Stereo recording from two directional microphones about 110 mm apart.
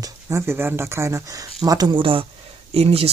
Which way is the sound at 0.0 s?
25° right (ahead or behind).